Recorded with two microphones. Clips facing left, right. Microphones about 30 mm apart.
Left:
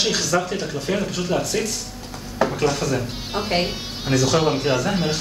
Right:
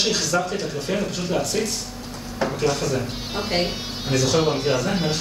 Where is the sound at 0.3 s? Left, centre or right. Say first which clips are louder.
Left 2 dB; left.